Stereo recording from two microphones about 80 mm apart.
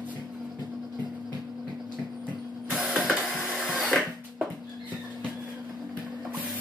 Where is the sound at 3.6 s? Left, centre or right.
Centre.